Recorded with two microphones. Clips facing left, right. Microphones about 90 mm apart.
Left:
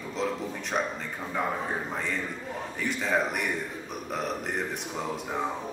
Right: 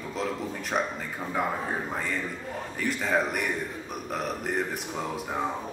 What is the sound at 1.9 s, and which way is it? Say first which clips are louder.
A man's voice: right 1 dB; centre (ahead or behind).